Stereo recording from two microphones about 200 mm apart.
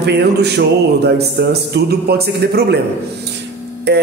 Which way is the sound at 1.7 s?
55° right (ahead or behind).